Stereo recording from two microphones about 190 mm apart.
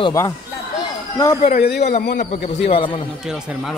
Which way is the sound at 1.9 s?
40° left (ahead or behind).